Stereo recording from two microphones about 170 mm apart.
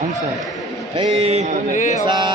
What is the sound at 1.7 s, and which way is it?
Mantra, 45° left (ahead or behind).